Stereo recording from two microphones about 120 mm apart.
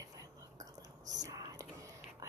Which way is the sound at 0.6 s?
30° right (ahead or behind).